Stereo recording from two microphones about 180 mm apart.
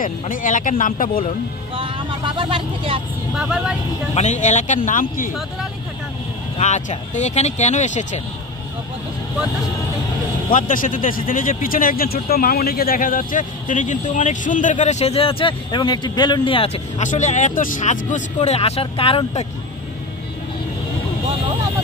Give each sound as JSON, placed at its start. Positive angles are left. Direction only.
{"t": 0.0, "sound": "speech", "side_deg": 50}
{"t": 1.8, "sound": "speech", "side_deg": -30}
{"t": 3.3, "sound": "speech", "side_deg": -5}
{"t": 4.1, "sound": "speech", "side_deg": 40}
{"t": 6.6, "sound": "speech", "side_deg": 40}
{"t": 10.5, "sound": "speech", "side_deg": 50}